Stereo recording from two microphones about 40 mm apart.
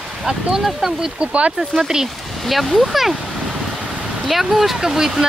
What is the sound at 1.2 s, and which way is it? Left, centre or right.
Speech, right.